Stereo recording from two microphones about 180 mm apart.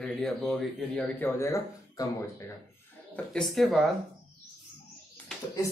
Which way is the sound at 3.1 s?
5° left (ahead or behind).